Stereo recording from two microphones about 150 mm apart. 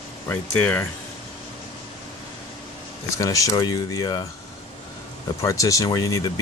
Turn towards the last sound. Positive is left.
turn(degrees=25)  # may be behind; listen again after turning